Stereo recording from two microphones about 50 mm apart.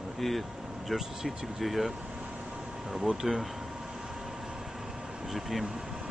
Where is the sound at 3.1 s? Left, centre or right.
Centre.